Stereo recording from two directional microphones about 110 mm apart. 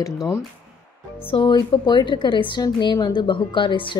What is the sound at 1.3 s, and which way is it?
A woman's voice, 45° left (ahead or behind).